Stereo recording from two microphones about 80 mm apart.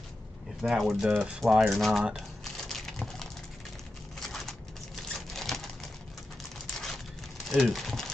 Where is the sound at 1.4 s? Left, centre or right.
Centre.